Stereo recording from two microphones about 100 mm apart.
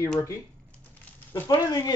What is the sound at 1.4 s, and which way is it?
Speech, 40° left (ahead or behind).